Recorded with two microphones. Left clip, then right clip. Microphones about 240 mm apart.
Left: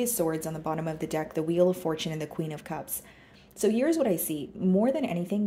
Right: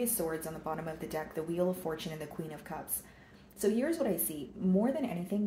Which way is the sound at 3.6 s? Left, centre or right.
Left.